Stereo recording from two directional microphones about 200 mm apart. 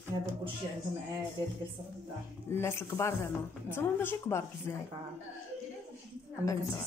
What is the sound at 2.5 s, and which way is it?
Speech, 15° left (ahead or behind).